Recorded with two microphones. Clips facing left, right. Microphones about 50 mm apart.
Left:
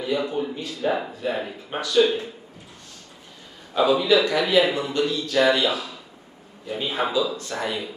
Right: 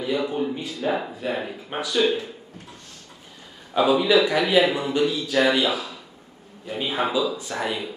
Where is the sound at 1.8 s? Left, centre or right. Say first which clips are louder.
Left 2 dB; centre.